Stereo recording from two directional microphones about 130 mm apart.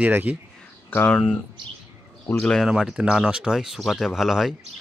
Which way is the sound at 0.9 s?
10° left (ahead or behind).